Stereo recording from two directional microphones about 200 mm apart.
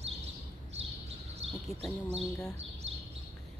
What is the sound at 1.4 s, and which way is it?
Bird, 65° right (ahead or behind).